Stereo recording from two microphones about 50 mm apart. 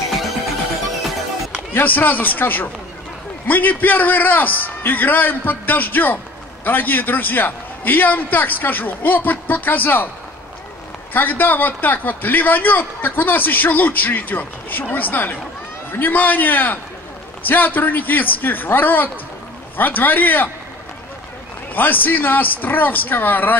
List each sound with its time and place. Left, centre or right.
1.7 s a man's voice: left
11.1 s a man's voice: left
21.7 s a man's voice: left